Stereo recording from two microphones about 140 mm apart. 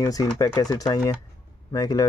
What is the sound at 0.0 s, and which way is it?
Speech, 25° left (ahead or behind).